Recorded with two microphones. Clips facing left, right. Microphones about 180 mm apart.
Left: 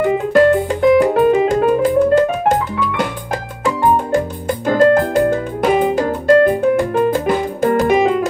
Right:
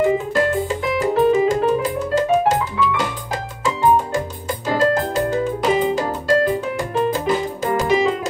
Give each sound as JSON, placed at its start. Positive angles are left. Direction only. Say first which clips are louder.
{"t": 0.3, "sound": "music", "louder": "left 7 dB", "side_deg": 60}